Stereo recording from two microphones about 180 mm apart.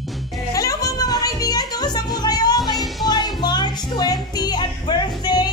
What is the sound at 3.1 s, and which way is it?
Music, 25° left (ahead or behind).